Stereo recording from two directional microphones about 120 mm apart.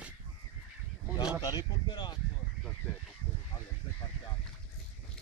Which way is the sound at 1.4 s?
35° left (ahead or behind).